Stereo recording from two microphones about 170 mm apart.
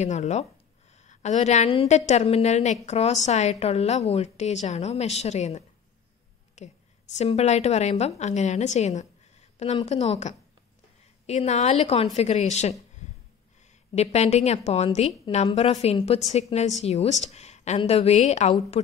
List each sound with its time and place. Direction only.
0.0 s a woman's voice: 40° left (ahead or behind)
13.9 s a woman's voice: 40° left (ahead or behind)